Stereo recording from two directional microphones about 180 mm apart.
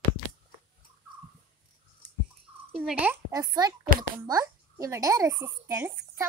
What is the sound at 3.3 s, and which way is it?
A child's voice, 20° right (ahead or behind).